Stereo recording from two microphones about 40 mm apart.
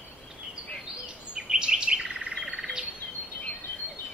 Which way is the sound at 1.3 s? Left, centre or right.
Right.